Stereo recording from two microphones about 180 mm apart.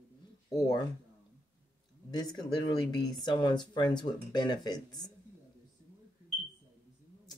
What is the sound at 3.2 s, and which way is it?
Speech, 25° left (ahead or behind).